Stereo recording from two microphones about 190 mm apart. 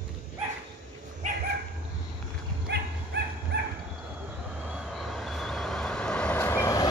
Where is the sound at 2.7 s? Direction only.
60° right (ahead or behind).